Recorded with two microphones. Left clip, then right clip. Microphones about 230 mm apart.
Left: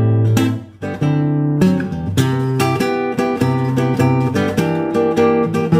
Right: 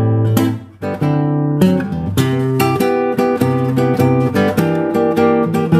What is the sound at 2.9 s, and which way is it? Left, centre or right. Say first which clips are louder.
Music: right 3 dB; right.